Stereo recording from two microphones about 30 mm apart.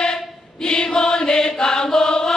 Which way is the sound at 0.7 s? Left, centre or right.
Left.